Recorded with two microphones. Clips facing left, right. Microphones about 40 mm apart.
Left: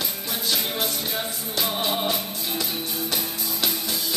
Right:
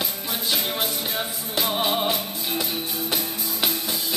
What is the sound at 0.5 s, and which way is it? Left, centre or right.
Music, centre.